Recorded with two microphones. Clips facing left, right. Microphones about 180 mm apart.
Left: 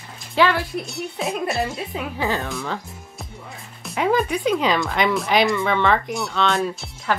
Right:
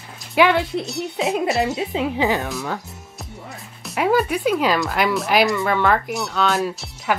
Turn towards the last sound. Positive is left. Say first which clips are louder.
# right 1 dB
turn(degrees=0)  # may be behind; listen again after turning